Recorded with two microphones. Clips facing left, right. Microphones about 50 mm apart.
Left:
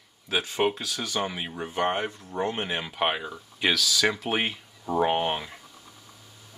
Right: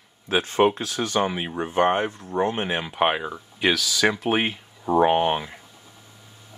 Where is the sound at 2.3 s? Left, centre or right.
Right.